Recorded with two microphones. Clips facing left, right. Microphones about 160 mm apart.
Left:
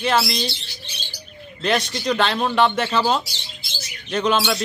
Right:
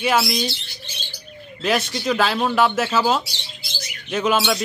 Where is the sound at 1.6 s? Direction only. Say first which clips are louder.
Even; 5° right (ahead or behind).